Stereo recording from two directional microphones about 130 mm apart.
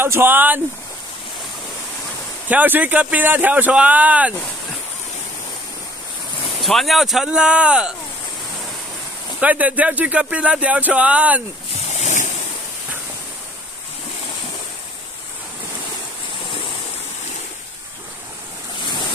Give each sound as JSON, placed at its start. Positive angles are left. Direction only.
{"t": 0.0, "sound": "speech", "side_deg": -20}
{"t": 2.4, "sound": "speech", "side_deg": -15}
{"t": 6.4, "sound": "speech", "side_deg": 0}
{"t": 9.4, "sound": "speech", "side_deg": -10}
{"t": 11.9, "sound": "boat", "side_deg": 65}